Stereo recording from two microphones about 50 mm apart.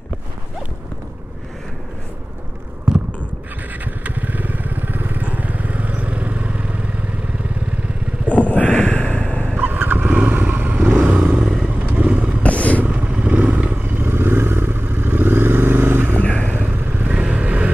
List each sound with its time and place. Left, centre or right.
3.8 s vehicle: right
8.4 s a sound: left
8.7 s a sound: centre
9.6 s motorcycle: right
11.6 s vehicle: right
12.4 s vehicle: left
12.8 s vehicle: right